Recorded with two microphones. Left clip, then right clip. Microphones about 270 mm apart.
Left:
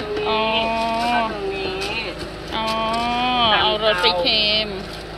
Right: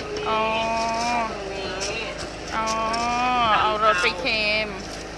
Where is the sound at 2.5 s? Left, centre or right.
Centre.